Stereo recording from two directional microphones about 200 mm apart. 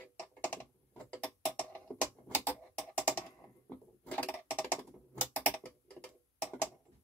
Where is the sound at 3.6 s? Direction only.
5° left (ahead or behind).